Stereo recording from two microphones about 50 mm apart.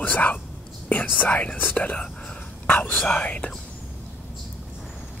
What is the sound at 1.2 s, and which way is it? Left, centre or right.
Speech, left.